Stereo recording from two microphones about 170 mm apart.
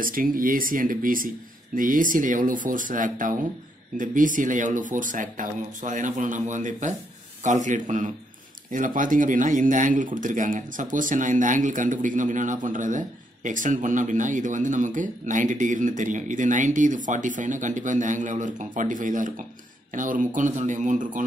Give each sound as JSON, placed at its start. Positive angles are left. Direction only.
{"t": 0.0, "sound": "speech", "side_deg": -55}